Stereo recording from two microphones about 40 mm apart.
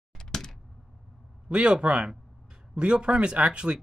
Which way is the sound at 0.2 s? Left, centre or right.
Centre.